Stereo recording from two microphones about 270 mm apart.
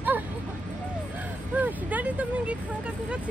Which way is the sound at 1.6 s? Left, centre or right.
Centre.